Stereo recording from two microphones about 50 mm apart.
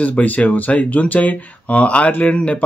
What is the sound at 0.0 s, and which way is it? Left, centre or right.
Speech, left.